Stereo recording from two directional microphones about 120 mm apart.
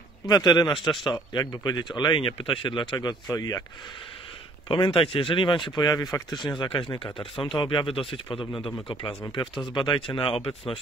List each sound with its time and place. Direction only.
0.3 s speech: 35° left (ahead or behind)
4.6 s speech: 40° left (ahead or behind)
9.8 s speech: 40° left (ahead or behind)